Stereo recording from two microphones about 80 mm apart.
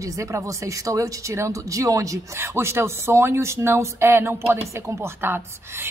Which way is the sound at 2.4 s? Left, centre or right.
Right.